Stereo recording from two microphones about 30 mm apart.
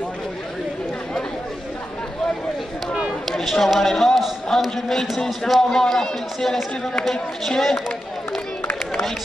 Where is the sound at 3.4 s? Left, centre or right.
Centre.